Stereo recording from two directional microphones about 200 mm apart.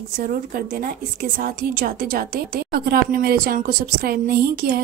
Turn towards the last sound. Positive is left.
turn(degrees=-50)  # may be behind; listen again after turning